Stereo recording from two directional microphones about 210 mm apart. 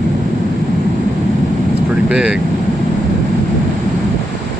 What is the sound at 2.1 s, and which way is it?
Speech, 5° right (ahead or behind).